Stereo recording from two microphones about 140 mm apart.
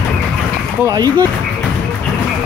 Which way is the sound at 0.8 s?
25° right (ahead or behind).